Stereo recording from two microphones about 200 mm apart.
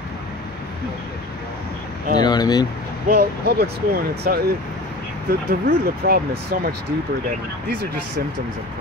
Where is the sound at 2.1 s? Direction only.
20° left (ahead or behind).